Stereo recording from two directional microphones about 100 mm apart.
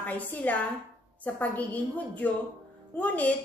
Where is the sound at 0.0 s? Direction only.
15° left (ahead or behind).